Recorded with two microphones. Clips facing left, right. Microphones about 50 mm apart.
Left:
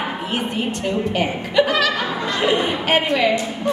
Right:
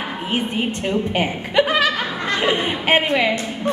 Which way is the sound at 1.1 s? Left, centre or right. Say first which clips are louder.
Left 1 dB; right.